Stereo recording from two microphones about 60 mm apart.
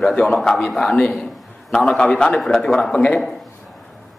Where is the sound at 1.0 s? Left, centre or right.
Centre.